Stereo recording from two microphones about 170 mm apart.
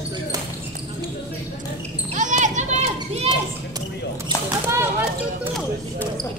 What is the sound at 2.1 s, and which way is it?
Basketball bounce, 45° right (ahead or behind).